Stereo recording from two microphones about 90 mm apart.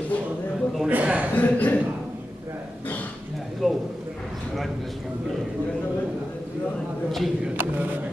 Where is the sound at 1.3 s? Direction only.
20° left (ahead or behind).